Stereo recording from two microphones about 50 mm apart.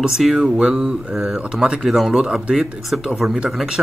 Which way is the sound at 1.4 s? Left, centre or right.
Centre.